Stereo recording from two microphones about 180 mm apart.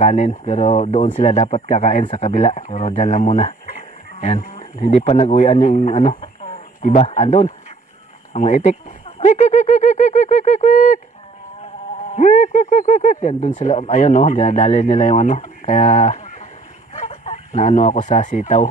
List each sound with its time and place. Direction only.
0.0 s speech: 40° left (ahead or behind)
12.2 s speech: 45° left (ahead or behind)